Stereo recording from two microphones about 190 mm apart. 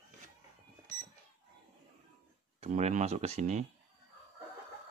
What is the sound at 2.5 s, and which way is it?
Speech, 35° right (ahead or behind).